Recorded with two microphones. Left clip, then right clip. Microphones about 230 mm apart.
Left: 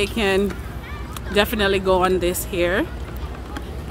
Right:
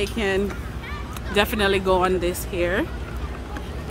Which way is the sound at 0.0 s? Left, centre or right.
Left.